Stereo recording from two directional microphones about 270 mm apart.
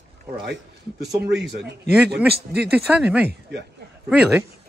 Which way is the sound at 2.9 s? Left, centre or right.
Centre.